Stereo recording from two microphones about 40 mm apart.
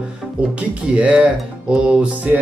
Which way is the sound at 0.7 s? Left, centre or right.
Right.